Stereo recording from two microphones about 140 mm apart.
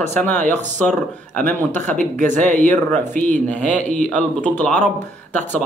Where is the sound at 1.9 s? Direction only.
60° right (ahead or behind).